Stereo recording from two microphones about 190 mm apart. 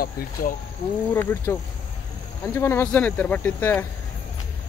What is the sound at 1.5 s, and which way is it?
Speech, 10° left (ahead or behind).